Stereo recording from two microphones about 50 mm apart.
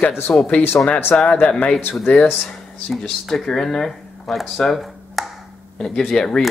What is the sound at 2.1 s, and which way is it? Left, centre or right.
Speech, left.